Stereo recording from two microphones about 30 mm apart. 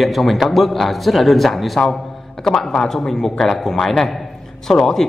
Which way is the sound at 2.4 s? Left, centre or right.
Centre.